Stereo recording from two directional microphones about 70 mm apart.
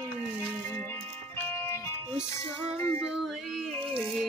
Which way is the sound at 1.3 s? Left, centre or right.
Left.